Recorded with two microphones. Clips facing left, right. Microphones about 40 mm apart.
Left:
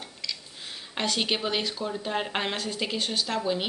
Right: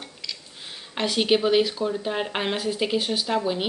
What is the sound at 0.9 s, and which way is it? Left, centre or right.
A woman's voice, centre.